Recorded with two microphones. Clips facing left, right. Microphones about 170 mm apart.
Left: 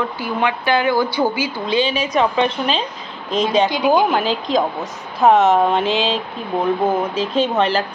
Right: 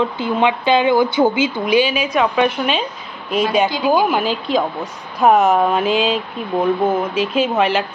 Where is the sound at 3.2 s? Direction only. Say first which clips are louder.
Even; 10° right (ahead or behind).